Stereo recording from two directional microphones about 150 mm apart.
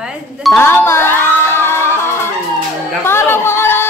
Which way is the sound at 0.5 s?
15° left (ahead or behind).